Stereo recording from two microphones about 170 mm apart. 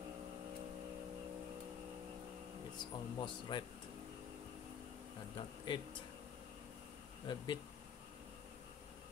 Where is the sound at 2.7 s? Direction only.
25° left (ahead or behind).